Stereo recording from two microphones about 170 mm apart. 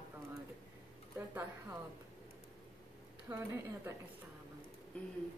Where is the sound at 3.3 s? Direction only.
15° right (ahead or behind).